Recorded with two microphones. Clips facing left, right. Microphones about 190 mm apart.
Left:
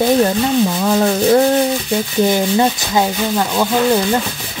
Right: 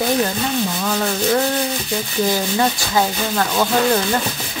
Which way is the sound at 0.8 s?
35° left (ahead or behind).